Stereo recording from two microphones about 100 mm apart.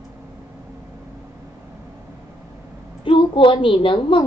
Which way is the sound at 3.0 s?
60° left (ahead or behind).